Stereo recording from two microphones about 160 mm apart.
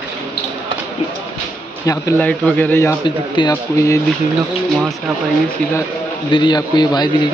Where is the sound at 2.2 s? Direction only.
10° left (ahead or behind).